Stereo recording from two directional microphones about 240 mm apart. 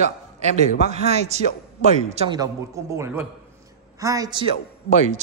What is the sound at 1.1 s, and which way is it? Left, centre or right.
A man's voice, right.